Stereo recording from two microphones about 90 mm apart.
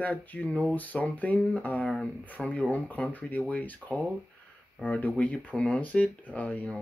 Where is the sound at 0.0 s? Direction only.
15° left (ahead or behind).